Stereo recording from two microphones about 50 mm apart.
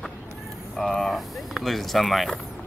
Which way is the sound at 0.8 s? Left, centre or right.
Centre.